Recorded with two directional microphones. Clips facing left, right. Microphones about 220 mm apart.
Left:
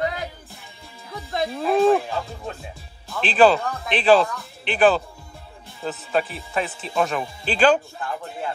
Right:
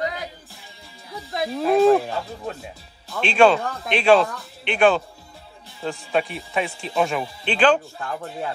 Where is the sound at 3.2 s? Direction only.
Centre (ahead or behind).